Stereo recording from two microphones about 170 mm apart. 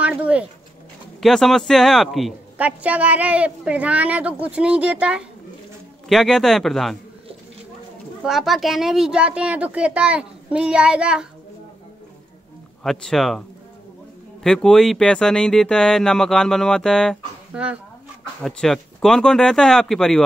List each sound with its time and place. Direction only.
0.0 s a woman's voice: 5° right (ahead or behind)
8.2 s speech: centre (ahead or behind)
12.8 s speech: centre (ahead or behind)
14.4 s speech: 5° left (ahead or behind)